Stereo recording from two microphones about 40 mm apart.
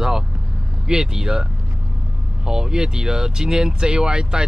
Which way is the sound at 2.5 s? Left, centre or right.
Centre.